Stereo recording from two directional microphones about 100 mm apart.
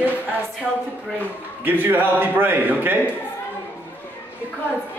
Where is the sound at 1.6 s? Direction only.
20° right (ahead or behind).